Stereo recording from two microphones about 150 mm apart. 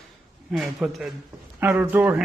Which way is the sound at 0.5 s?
5° right (ahead or behind).